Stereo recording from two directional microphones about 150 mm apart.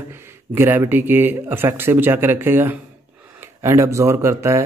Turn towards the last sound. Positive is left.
turn(degrees=-20)  # may be behind; listen again after turning